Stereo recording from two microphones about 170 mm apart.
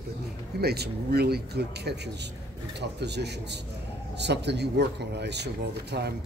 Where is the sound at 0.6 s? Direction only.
70° right (ahead or behind).